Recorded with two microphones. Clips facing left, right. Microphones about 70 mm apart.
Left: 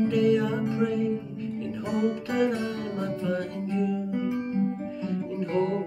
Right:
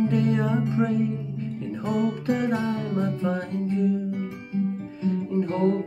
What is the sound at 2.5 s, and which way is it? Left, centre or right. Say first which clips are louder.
Music: right 4 dB; right.